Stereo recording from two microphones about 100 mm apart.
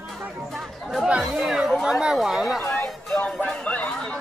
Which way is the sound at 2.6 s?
10° left (ahead or behind).